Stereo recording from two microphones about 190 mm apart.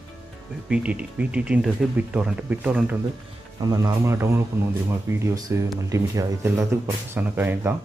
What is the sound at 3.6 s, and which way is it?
Speech, 20° right (ahead or behind).